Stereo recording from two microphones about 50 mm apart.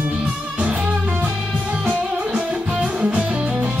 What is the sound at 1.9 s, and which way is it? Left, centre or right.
Music, right.